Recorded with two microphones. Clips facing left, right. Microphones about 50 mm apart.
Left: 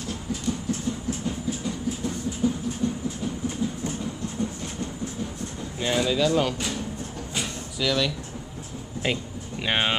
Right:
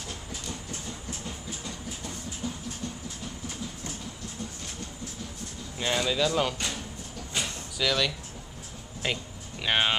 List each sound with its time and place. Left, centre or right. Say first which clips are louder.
0.1 s vehicle: left 11 dB; centre
2.8 s train: left 11 dB; centre
5.8 s speech: left 3 dB; centre
7.3 s a sound: left 1 dB; centre